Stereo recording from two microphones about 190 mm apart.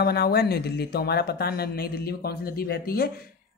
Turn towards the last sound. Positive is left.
turn(degrees=55)  # may be behind; listen again after turning